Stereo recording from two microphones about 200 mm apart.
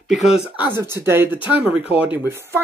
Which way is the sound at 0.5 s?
10° right (ahead or behind).